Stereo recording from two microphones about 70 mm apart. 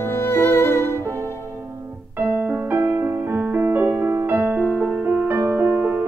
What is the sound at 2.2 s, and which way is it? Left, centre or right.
Music, right.